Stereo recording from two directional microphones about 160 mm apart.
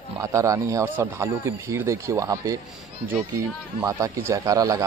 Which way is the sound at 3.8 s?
20° right (ahead or behind).